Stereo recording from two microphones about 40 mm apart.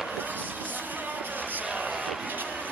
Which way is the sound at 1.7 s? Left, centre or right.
Right.